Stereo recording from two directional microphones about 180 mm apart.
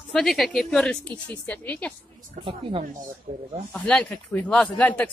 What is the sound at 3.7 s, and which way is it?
Speech, 5° left (ahead or behind).